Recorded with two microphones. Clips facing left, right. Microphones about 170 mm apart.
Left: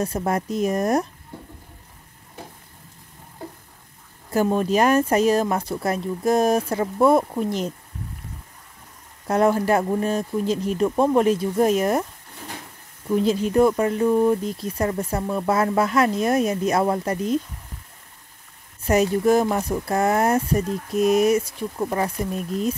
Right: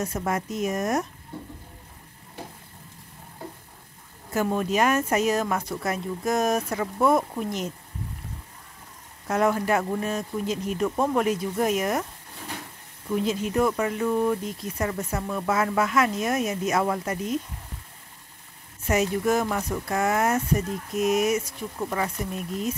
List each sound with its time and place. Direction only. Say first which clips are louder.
0.0 s speech: left 4 dB; 30° left (ahead or behind)
4.3 s speech: left 5 dB; 30° left (ahead or behind)
9.3 s speech: left 4 dB; 35° left (ahead or behind)
13.2 s speech: left 6 dB; 35° left (ahead or behind)
18.9 s speech: left 5 dB; 35° left (ahead or behind)